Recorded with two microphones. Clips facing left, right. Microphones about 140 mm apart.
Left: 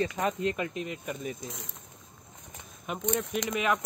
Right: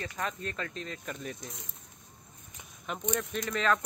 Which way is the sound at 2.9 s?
5° left (ahead or behind).